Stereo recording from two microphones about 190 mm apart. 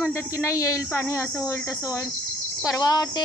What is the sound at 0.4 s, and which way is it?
Speech, 15° left (ahead or behind).